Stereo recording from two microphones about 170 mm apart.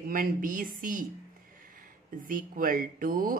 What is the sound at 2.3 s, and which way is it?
Speech, 55° right (ahead or behind).